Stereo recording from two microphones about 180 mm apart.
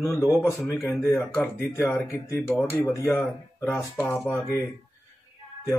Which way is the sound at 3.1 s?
5° left (ahead or behind).